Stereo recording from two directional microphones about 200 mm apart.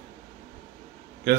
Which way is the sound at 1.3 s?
50° right (ahead or behind).